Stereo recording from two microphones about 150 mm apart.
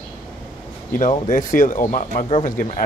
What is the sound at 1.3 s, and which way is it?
Speech, 60° left (ahead or behind).